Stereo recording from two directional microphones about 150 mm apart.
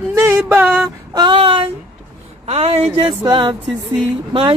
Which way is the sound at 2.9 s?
30° right (ahead or behind).